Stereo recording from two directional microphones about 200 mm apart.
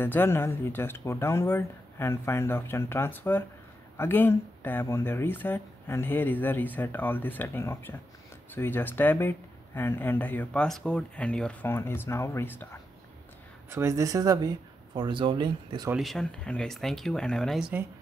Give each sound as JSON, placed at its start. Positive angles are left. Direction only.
{"t": 0.0, "sound": "speech", "side_deg": 10}
{"t": 13.7, "sound": "speech", "side_deg": -15}
{"t": 15.9, "sound": "speech", "side_deg": 0}